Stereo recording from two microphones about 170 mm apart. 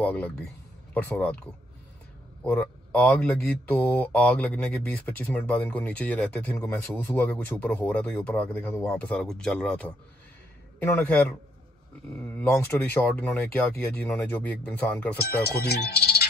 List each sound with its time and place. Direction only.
0.0 s speech: 10° left (ahead or behind)
2.4 s speech: 10° left (ahead or behind)
15.2 s speech: 70° left (ahead or behind)